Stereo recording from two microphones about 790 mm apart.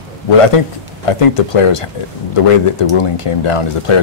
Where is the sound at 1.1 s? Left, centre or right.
Left.